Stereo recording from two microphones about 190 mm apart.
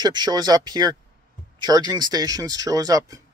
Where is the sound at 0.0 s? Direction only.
20° right (ahead or behind).